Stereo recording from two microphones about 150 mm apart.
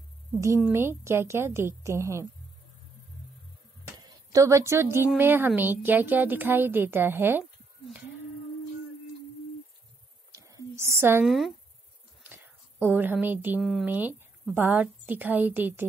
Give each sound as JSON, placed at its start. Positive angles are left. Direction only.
{"t": 0.7, "sound": "a woman's voice", "side_deg": -15}
{"t": 3.8, "sound": "a woman's voice", "side_deg": -20}
{"t": 10.3, "sound": "a sound", "side_deg": -20}
{"t": 11.2, "sound": "speech", "side_deg": 0}
{"t": 12.2, "sound": "a sound", "side_deg": -15}
{"t": 13.6, "sound": "speech", "side_deg": 0}
{"t": 13.8, "sound": "a woman's voice", "side_deg": -10}